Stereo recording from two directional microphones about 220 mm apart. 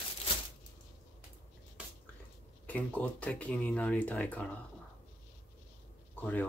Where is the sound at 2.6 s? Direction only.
5° left (ahead or behind).